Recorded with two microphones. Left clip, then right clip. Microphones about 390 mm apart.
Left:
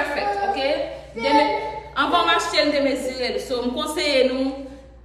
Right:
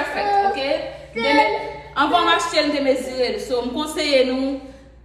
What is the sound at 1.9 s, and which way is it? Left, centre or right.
A woman's voice, centre.